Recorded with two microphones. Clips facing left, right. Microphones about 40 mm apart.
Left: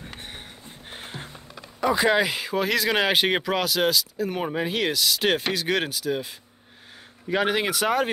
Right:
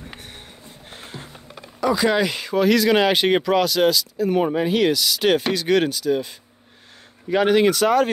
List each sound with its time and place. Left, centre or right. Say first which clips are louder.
0.2 s a sound: left 1 dB; left
2.0 s speech: right 1 dB; centre
7.2 s speech: right 7 dB; centre